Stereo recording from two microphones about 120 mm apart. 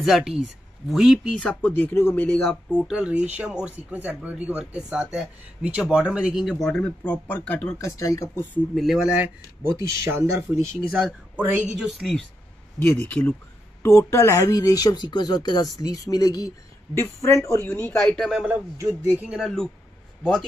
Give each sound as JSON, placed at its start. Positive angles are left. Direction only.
{"t": 0.0, "sound": "speech", "side_deg": -5}
{"t": 1.4, "sound": "speech", "side_deg": 10}
{"t": 2.9, "sound": "speech", "side_deg": -10}
{"t": 6.5, "sound": "speech", "side_deg": 10}
{"t": 8.7, "sound": "speech", "side_deg": 0}
{"t": 9.8, "sound": "a woman's voice", "side_deg": -20}
{"t": 11.8, "sound": "speech", "side_deg": 0}
{"t": 12.7, "sound": "speech", "side_deg": 15}
{"t": 13.8, "sound": "speech", "side_deg": 25}
{"t": 18.1, "sound": "speech", "side_deg": 5}
{"t": 19.0, "sound": "speech", "side_deg": -10}